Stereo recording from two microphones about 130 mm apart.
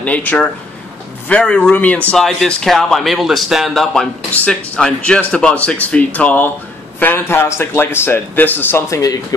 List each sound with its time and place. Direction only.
0.0 s a man's voice: 10° left (ahead or behind)